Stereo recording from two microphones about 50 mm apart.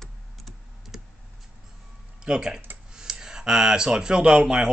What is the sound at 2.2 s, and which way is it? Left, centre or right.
Speech, centre.